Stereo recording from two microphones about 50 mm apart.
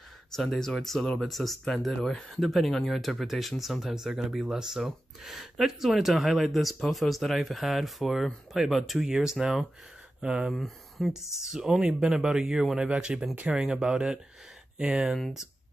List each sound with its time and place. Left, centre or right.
0.3 s speech: centre
11.0 s speech: centre